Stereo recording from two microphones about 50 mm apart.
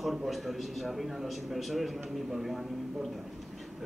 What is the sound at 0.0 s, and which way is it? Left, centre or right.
A man's voice, centre.